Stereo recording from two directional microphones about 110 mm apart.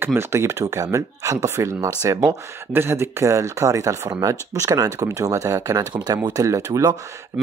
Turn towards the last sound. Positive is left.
turn(degrees=-30)  # may be behind; listen again after turning